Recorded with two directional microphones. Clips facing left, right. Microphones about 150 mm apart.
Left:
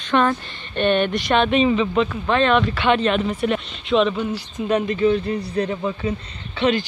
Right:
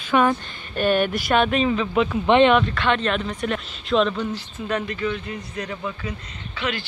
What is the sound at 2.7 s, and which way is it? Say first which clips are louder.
A man's voice: left 4 dB; 5° left (ahead or behind).